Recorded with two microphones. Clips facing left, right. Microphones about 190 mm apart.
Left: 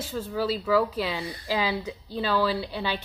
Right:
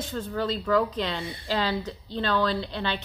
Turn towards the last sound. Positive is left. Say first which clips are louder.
# even
turn(degrees=10)  # may be behind; listen again after turning